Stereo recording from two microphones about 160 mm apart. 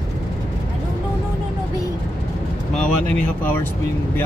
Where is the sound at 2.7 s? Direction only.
5° left (ahead or behind).